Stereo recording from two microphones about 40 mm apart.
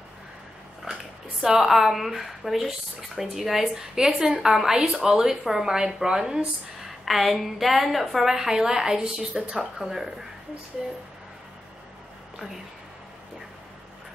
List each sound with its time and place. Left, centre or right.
0.9 s a sound: centre
1.6 s speech: centre
7.1 s a woman's voice: centre